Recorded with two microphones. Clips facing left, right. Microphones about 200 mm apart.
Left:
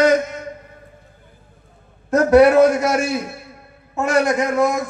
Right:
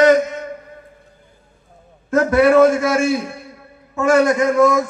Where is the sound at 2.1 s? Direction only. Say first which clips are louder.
Left 2 dB; 40° left (ahead or behind).